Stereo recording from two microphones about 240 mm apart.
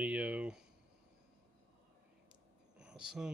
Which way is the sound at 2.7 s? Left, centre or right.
Centre.